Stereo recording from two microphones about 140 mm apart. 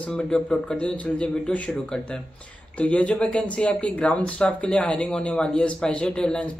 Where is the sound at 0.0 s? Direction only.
5° left (ahead or behind).